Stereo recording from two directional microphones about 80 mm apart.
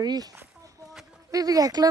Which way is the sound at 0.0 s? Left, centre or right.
Right.